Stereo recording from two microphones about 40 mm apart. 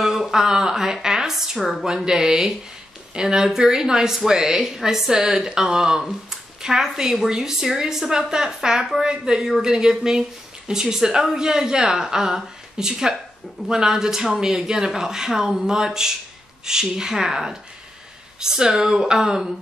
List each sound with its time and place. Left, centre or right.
0.3 s a woman's voice: centre
1.6 s speech: centre
1.9 s a woman's voice: centre